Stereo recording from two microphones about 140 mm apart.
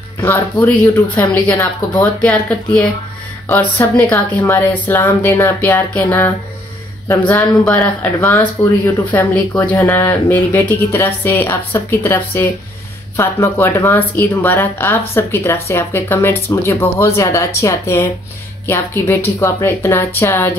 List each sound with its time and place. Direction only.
0.2 s speech: 15° left (ahead or behind)
1.5 s speech: 20° left (ahead or behind)
2.2 s speech: 10° left (ahead or behind)